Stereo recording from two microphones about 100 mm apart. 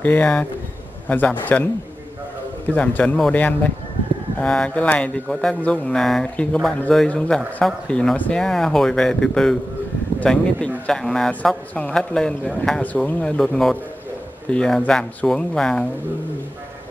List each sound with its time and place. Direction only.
0.0 s speech: 15° left (ahead or behind)
2.7 s speech: 15° left (ahead or behind)